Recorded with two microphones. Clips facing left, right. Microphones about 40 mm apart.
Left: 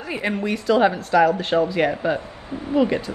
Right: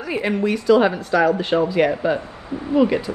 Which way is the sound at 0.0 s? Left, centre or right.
Centre.